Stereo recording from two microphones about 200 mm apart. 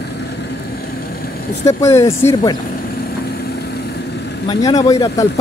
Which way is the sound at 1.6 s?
15° left (ahead or behind).